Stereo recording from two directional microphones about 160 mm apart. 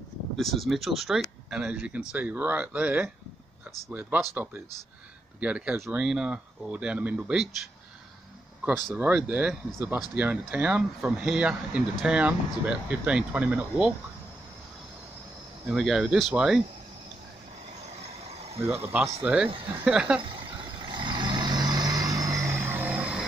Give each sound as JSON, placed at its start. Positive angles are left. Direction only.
{"t": 0.4, "sound": "speech", "side_deg": 0}
{"t": 5.4, "sound": "speech", "side_deg": -10}
{"t": 8.6, "sound": "speech", "side_deg": 0}
{"t": 15.6, "sound": "speech", "side_deg": 0}
{"t": 18.7, "sound": "speech", "side_deg": -15}
{"t": 20.3, "sound": "vehicle", "side_deg": -30}